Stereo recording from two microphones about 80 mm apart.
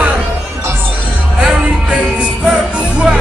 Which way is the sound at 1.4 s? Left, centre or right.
Centre.